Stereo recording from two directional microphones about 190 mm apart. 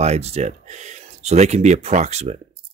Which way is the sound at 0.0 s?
35° right (ahead or behind).